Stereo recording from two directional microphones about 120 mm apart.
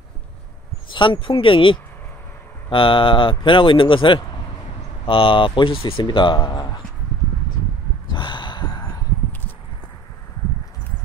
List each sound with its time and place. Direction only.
0.8 s speech: 45° left (ahead or behind)
8.1 s gasp: 40° left (ahead or behind)